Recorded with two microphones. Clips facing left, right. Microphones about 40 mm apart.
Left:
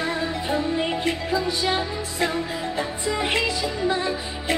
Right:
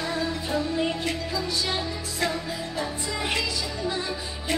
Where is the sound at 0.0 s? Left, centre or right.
Left.